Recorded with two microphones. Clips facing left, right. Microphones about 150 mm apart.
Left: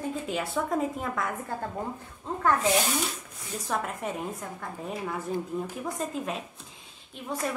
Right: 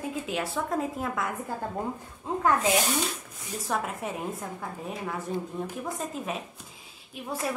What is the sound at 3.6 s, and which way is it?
A woman's voice, centre (ahead or behind).